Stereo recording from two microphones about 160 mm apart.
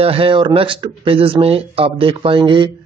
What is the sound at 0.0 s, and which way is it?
Speech, 35° right (ahead or behind).